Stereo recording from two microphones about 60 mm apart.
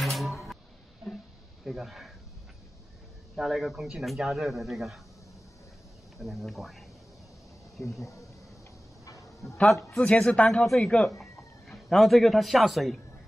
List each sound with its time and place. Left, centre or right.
0.0 s music: centre
1.6 s speech: centre
3.3 s a man's voice: centre
6.1 s speech: centre
8.0 s speech: left
9.0 s dog: left
9.9 s speech: centre
10.8 s chicken: centre
11.9 s a man's voice: centre